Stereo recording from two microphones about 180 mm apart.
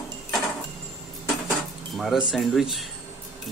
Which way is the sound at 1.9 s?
Centre (ahead or behind).